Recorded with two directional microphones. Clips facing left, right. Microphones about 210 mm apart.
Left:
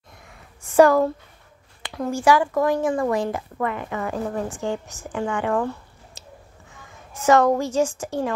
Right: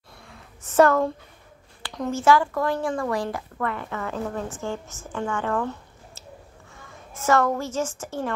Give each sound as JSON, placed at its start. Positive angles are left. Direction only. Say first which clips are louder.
{"t": 0.6, "sound": "speech", "louder": "left 3 dB", "side_deg": 10}
{"t": 6.2, "sound": "a sound", "louder": "right 1 dB", "side_deg": 15}
{"t": 7.2, "sound": "speech", "louder": "left 5 dB", "side_deg": 15}